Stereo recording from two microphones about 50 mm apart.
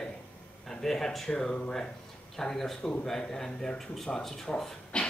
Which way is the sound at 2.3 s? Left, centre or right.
Centre.